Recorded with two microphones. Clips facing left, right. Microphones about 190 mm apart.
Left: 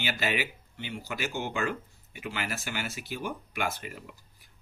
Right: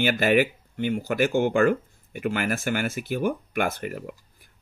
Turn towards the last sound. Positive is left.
turn(degrees=-55)  # may be behind; listen again after turning